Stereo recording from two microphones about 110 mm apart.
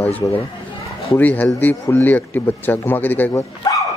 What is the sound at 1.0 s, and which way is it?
A man's voice, 15° left (ahead or behind).